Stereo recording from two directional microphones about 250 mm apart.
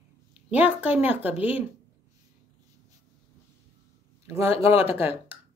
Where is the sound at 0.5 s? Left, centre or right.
Centre.